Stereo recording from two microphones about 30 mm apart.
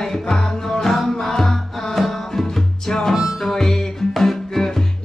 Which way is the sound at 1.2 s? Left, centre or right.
Centre.